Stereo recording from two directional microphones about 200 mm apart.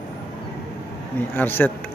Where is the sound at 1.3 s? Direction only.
10° left (ahead or behind).